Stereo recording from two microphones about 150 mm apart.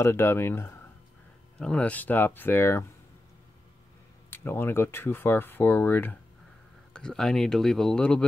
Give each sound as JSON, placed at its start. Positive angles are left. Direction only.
{"t": 0.0, "sound": "speech", "side_deg": 15}
{"t": 4.3, "sound": "speech", "side_deg": 15}